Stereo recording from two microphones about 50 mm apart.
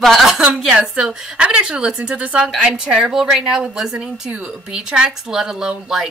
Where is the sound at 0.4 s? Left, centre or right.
Centre.